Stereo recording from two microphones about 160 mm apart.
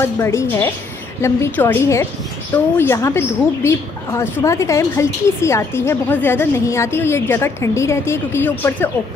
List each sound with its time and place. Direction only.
0.0 s a woman's voice: 15° left (ahead or behind)